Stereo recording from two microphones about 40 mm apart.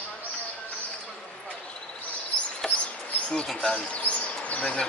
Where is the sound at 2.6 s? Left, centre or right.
Centre.